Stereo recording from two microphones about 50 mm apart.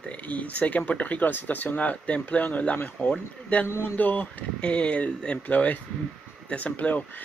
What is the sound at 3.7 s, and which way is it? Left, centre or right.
Speech, left.